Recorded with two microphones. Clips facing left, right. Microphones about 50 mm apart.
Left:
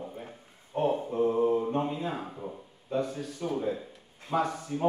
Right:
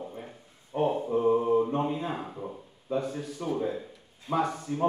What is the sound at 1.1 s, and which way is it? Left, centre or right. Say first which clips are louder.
Mantra: right 3 dB; centre.